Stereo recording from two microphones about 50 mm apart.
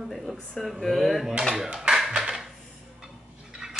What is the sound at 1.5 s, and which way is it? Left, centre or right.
Speech, centre.